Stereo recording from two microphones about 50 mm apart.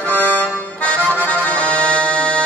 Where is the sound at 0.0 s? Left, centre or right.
Left.